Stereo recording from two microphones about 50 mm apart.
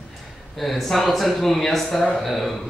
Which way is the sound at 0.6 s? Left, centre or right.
Centre.